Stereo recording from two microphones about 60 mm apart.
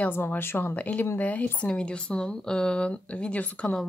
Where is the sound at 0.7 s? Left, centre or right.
Left.